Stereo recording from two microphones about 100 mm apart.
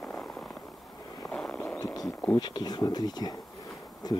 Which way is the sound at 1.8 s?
40° left (ahead or behind).